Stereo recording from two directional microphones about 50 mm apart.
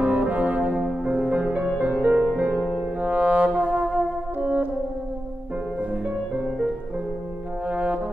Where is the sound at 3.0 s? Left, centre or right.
Right.